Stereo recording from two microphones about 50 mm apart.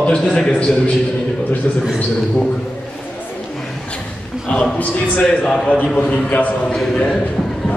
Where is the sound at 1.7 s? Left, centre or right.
Left.